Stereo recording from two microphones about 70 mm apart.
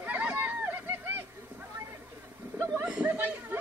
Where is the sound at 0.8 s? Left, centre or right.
Right.